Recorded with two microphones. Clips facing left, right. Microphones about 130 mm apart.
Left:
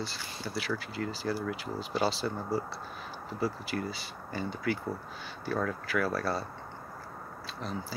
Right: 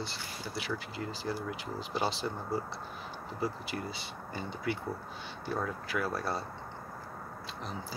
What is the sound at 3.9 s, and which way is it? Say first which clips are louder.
Speech: left 2 dB; 20° right (ahead or behind).